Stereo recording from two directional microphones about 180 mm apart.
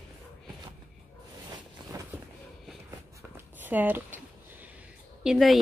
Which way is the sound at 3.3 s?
10° right (ahead or behind).